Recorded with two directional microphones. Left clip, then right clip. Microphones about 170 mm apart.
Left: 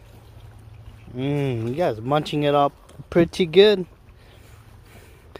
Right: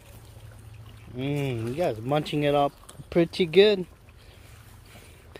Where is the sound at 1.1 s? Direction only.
20° left (ahead or behind).